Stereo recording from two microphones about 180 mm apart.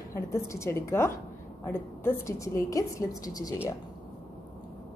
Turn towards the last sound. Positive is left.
turn(degrees=20)  # may be behind; listen again after turning